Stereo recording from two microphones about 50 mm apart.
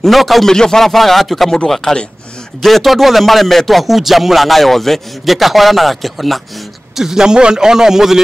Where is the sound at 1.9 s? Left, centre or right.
Centre.